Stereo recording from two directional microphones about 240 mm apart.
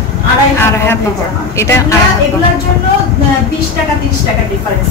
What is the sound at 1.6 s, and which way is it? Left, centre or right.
Speech, centre.